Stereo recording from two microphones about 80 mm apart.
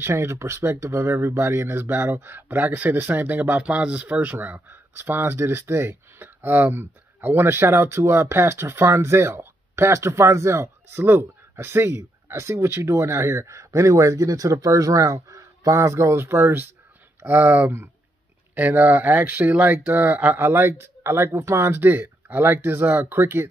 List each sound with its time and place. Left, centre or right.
0.0 s speech: right